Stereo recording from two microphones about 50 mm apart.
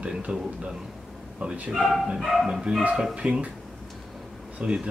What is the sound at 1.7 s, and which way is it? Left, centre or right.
Speech, centre.